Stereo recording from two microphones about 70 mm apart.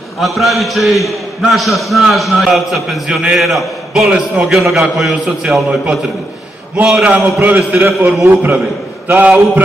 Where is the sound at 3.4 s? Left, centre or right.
Centre.